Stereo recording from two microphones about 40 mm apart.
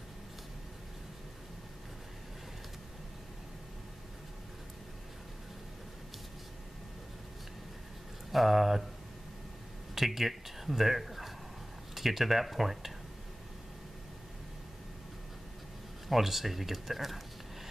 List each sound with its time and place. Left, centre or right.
8.3 s speech: centre
9.9 s speech: centre
16.1 s speech: centre